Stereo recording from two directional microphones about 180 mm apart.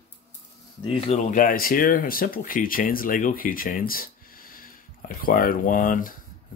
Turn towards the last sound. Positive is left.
turn(degrees=50)  # may be behind; listen again after turning